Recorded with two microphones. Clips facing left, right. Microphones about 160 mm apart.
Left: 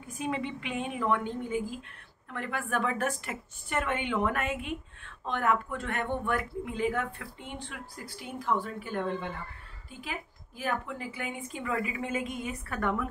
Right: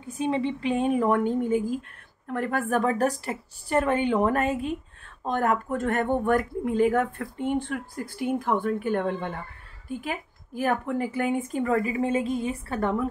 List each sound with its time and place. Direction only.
0.2 s a woman's voice: 30° right (ahead or behind)